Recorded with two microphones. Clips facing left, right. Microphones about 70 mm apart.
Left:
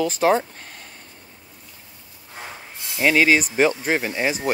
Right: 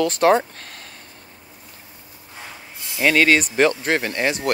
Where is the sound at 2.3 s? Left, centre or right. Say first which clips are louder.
Left 2 dB; left.